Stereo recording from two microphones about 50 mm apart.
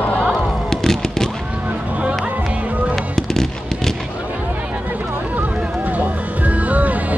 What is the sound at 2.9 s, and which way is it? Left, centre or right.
Fireworks, centre.